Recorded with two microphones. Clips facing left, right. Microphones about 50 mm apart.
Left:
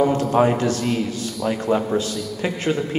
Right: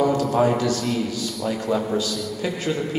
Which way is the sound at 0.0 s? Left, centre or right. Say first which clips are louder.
Left 2 dB; left.